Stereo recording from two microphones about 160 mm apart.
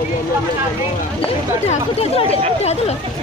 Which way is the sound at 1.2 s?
40° left (ahead or behind).